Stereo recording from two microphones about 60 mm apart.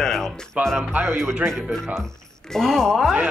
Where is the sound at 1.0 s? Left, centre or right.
Right.